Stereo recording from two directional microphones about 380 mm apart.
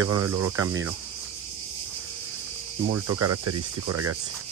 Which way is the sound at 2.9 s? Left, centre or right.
Right.